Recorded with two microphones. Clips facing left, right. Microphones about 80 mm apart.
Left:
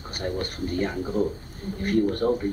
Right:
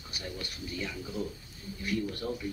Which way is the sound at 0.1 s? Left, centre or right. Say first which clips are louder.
Left 11 dB; left.